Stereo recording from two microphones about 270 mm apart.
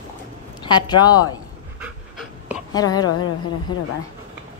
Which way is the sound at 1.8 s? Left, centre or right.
Centre.